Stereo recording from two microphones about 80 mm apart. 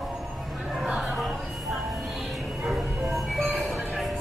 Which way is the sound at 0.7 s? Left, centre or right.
Centre.